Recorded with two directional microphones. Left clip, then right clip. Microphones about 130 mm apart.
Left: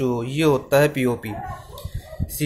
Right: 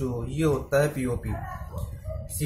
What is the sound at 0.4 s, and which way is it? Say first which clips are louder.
Speech: left 6 dB; 55° left (ahead or behind).